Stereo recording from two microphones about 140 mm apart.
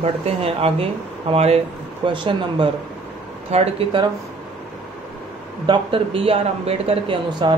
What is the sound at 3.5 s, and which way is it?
Speech, 50° right (ahead or behind).